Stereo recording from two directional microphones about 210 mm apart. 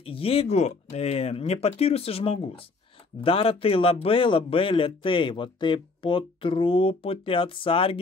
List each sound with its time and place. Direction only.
0.0 s a man's voice: 25° left (ahead or behind)